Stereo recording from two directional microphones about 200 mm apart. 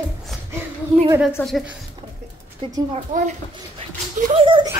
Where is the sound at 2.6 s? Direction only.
25° right (ahead or behind).